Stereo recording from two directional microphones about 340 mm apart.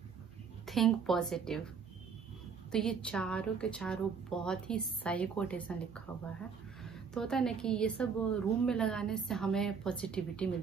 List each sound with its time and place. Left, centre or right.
0.7 s a woman's voice: centre
2.7 s a woman's voice: centre